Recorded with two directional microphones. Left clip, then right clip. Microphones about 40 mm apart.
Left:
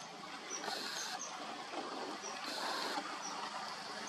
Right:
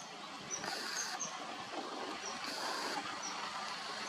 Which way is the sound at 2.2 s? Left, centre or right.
Centre.